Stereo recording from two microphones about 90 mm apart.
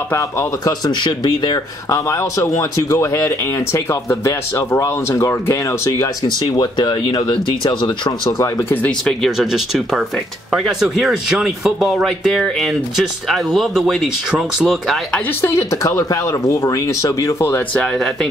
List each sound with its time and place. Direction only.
0.1 s speech: 35° left (ahead or behind)
1.0 s speech: 55° left (ahead or behind)
1.9 s speech: 35° left (ahead or behind)
6.2 s speech: 55° left (ahead or behind)
8.3 s speech: 40° left (ahead or behind)
9.2 s speech: 5° right (ahead or behind)
15.4 s speech: 35° left (ahead or behind)